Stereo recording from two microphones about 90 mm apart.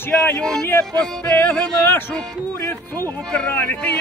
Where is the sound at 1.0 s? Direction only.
20° left (ahead or behind).